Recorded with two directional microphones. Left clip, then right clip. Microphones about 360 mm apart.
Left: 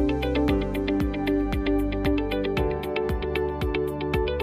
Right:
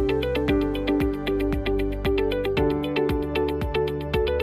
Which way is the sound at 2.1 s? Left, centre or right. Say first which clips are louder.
Right 3 dB; centre.